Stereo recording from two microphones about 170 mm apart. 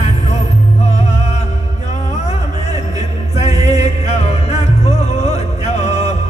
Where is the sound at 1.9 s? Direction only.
40° left (ahead or behind).